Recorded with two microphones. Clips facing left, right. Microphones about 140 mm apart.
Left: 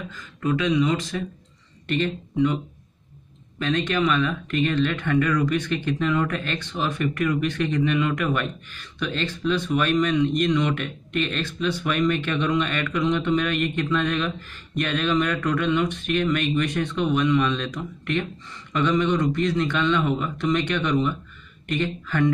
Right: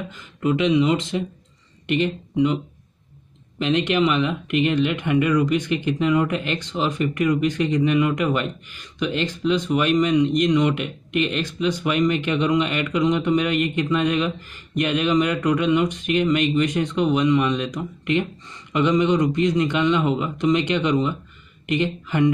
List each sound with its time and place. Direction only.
0.1 s speech: 20° right (ahead or behind)